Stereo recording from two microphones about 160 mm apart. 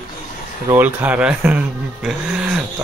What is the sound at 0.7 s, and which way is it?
Speech, 10° right (ahead or behind).